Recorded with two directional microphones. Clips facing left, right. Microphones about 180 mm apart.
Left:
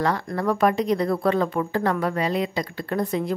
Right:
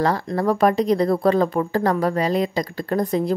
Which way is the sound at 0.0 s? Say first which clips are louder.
Right 3 dB; 35° right (ahead or behind).